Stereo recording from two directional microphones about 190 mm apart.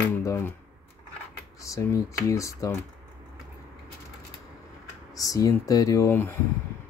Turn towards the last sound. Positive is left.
turn(degrees=15)  # may be behind; listen again after turning